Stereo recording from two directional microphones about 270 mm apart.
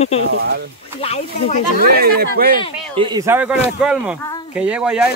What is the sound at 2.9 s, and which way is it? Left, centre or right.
Speech, centre.